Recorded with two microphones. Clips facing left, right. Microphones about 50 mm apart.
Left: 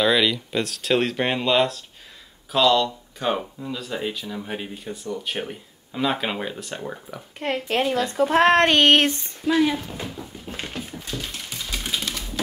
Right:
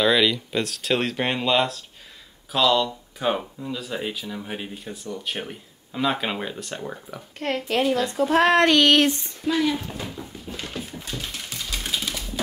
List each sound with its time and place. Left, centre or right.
0.0 s speech: centre
7.3 s speech: centre
7.6 s speech: left
9.4 s speech: centre
10.2 s a sound: centre
10.5 s a sound: left
11.1 s typing: centre